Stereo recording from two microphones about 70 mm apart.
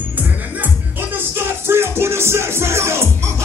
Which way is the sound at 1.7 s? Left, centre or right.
Right.